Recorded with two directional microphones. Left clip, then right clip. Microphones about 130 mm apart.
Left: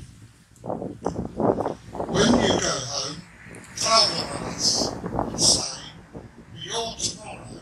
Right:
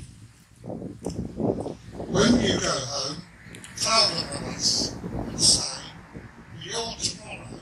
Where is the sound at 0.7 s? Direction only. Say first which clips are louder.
Left 6 dB; 10° right (ahead or behind).